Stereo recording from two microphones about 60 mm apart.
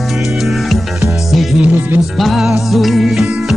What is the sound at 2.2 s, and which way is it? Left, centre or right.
Music, centre.